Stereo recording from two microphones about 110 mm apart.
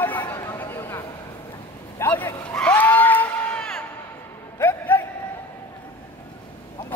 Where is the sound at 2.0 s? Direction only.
15° left (ahead or behind).